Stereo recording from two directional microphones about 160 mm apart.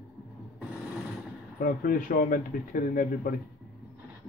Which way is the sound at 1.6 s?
60° left (ahead or behind).